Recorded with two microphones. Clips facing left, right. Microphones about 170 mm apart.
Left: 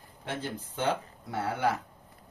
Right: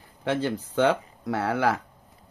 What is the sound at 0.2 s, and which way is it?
Speech, 90° right.